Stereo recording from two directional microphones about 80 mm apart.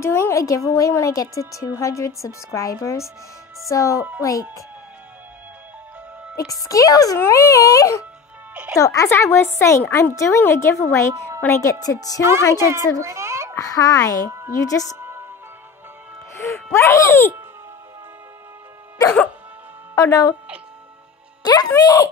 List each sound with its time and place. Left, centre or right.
0.0 s a woman's voice: left
6.7 s a woman's voice: left
11.8 s a woman's voice: left
12.5 s a child's voice: right
13.0 s a sound: right
13.6 s a woman's voice: left
14.9 s music: right
16.3 s music: left
16.7 s speech: left
20.0 s a woman's voice: left
21.4 s a woman's voice: left